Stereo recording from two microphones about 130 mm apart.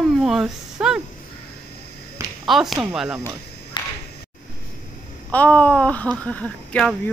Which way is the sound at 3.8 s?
35° left (ahead or behind).